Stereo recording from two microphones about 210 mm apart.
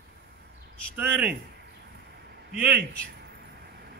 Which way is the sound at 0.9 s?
10° right (ahead or behind).